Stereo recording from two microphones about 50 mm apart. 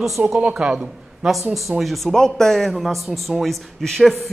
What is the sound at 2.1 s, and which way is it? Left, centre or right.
A man's voice, centre.